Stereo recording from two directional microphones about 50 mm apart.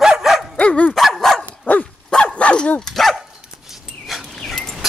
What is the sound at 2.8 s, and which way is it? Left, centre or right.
Dog, centre.